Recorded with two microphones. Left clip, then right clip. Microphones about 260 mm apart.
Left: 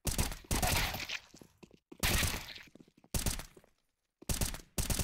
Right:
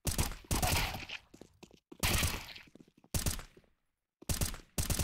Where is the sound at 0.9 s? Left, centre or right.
Centre.